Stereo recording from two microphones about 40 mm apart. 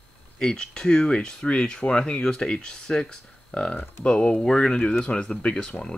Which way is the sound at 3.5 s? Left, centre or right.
Left.